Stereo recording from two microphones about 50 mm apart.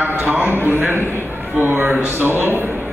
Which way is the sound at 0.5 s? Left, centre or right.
Right.